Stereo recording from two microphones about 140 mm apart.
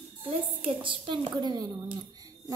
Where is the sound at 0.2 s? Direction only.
40° right (ahead or behind).